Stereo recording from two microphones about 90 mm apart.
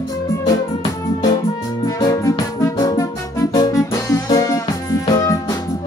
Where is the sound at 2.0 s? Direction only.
45° left (ahead or behind).